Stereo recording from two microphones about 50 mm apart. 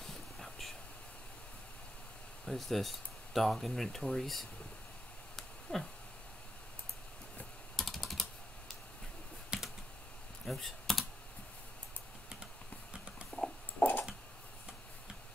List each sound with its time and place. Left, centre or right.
0.0 s whispering: centre
2.4 s speech: centre
5.3 s a sound: centre
7.7 s typing: centre
9.5 s computer keyboard: centre
10.5 s computer keyboard: centre
13.7 s a sound: left